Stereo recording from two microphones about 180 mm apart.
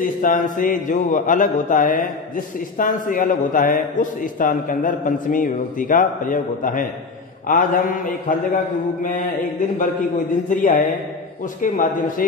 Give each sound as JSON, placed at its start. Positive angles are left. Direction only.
{"t": 0.0, "sound": "a man's voice", "side_deg": 45}
{"t": 9.6, "sound": "a man's voice", "side_deg": 45}